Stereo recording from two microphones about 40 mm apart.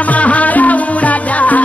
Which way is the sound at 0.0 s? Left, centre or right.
Left.